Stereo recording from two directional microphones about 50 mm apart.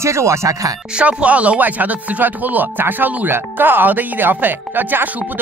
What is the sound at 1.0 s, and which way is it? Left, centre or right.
Speech, right.